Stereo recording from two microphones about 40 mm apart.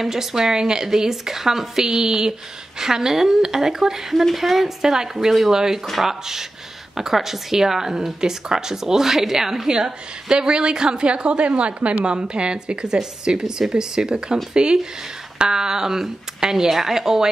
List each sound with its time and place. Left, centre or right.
0.0 s a woman's voice: centre